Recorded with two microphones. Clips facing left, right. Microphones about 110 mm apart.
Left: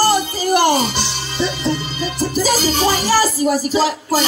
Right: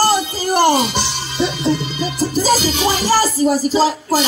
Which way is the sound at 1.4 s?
40° left (ahead or behind).